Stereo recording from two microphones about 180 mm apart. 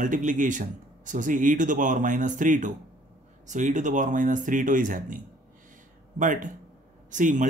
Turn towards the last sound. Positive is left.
turn(degrees=-45)  # may be behind; listen again after turning